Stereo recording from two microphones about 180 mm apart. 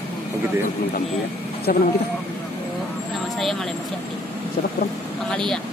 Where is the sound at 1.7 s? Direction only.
55° left (ahead or behind).